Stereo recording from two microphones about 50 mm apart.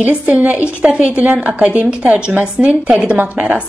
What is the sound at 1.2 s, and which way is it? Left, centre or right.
Speech, right.